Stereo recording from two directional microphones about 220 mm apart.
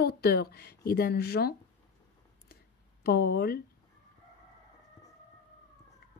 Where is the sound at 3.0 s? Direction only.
45° left (ahead or behind).